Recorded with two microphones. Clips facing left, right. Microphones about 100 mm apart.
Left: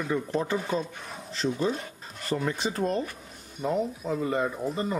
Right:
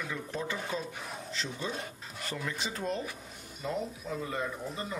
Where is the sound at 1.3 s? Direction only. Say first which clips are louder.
Left 11 dB; 40° left (ahead or behind).